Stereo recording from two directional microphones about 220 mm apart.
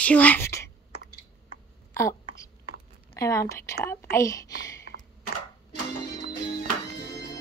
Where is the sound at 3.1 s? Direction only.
15° left (ahead or behind).